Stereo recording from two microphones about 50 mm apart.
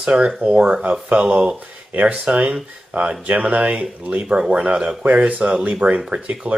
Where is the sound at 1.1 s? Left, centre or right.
Right.